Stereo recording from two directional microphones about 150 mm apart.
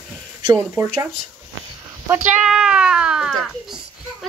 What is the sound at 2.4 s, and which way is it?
Speech, 5° right (ahead or behind).